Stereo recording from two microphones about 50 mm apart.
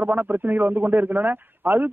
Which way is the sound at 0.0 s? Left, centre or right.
Right.